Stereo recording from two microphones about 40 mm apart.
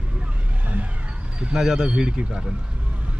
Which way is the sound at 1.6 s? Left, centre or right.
Centre.